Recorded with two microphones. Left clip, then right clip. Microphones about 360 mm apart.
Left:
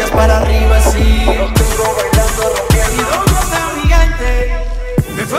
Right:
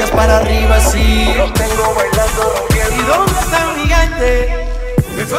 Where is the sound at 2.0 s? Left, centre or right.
Left.